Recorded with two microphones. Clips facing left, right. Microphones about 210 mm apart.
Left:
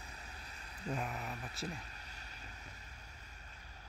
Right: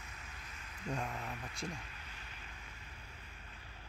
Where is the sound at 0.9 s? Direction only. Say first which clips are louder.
Even; 5° left (ahead or behind).